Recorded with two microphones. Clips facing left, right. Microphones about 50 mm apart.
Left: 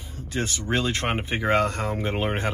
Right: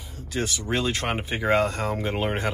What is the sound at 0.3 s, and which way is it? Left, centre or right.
Speech, left.